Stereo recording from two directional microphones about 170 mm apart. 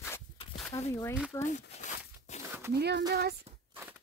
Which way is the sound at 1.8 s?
45° left (ahead or behind).